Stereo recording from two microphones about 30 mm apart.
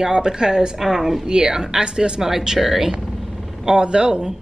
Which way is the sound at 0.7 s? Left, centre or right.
Centre.